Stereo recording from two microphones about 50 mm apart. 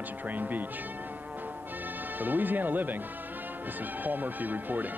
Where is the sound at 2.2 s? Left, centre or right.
Right.